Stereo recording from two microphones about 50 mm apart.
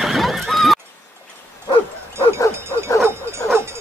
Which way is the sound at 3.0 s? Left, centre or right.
Right.